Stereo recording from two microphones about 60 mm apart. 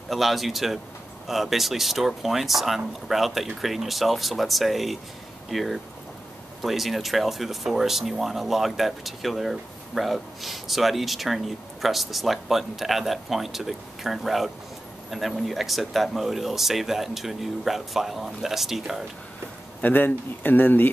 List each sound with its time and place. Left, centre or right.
0.1 s speech: centre
19.8 s speech: left